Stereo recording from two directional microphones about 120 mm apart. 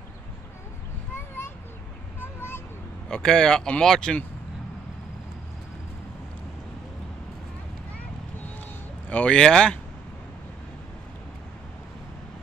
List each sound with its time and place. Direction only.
3.1 s speech: 5° left (ahead or behind)
9.1 s speech: 10° left (ahead or behind)